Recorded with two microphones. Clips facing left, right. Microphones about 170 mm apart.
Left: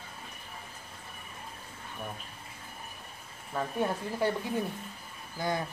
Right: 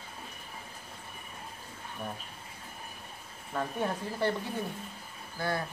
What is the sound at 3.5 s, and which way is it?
Speech, 5° left (ahead or behind).